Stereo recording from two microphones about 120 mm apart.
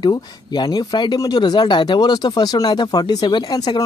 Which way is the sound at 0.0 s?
35° left (ahead or behind).